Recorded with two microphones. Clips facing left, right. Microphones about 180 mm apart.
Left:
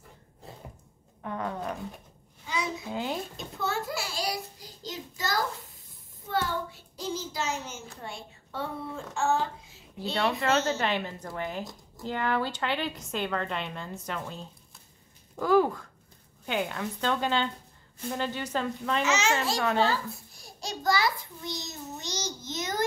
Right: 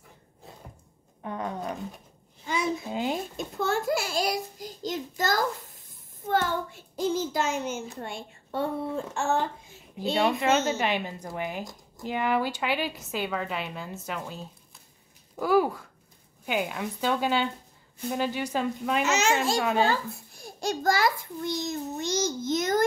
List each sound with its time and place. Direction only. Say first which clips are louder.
1.2 s roaring cats: right 1 dB; 20° right (ahead or behind)
2.4 s a sound: right 4 dB; 50° right (ahead or behind)
2.9 s a sound: right 3 dB; 20° right (ahead or behind)
3.3 s a sound: right 4 dB; 50° right (ahead or behind)
6.2 s child singing: right 4 dB; 50° right (ahead or behind)
9.9 s a woman's voice: right 4 dB; 15° right (ahead or behind)
19.0 s a child's voice: right 2 dB; 50° right (ahead or behind)
19.6 s speech: right 1 dB; 10° right (ahead or behind)
20.6 s a child's voice: right 3 dB; 50° right (ahead or behind)